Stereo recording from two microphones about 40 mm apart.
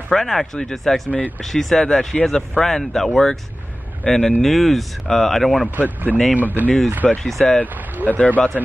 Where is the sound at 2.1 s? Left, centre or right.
Centre.